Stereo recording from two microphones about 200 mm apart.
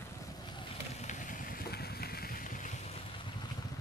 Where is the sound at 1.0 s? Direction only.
40° left (ahead or behind).